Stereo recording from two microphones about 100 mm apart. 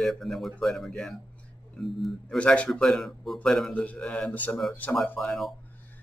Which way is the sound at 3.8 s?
15° left (ahead or behind).